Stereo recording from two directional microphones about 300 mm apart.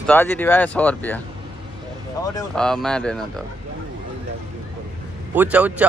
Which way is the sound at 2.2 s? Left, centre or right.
Centre.